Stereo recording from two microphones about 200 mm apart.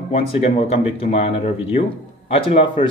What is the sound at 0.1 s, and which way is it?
Speech, 30° left (ahead or behind).